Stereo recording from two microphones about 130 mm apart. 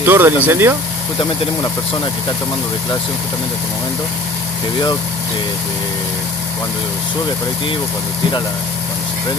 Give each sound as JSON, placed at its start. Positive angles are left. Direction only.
{"t": 0.0, "sound": "speech", "side_deg": -15}